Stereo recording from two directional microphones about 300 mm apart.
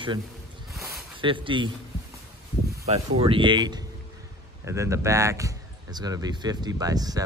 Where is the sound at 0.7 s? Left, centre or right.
Centre.